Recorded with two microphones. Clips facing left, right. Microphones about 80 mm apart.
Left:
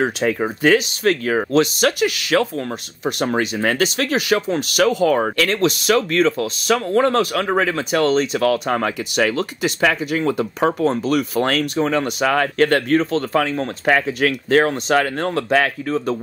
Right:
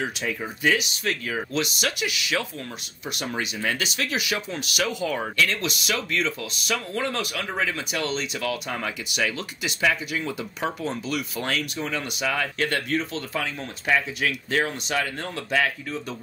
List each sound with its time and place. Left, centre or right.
0.0 s speech: left
10.9 s speech: left